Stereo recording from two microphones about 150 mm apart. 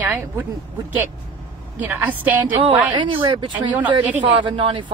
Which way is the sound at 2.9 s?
35° right (ahead or behind).